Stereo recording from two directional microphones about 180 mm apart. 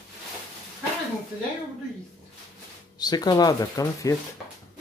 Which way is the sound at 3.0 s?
20° left (ahead or behind).